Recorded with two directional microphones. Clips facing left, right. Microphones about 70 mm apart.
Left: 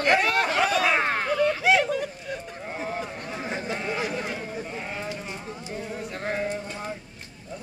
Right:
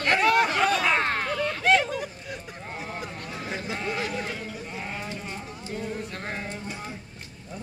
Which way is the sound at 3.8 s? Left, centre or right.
Centre.